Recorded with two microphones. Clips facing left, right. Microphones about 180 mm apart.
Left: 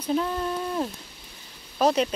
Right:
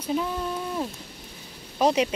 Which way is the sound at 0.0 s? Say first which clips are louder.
Left 2 dB; 5° right (ahead or behind).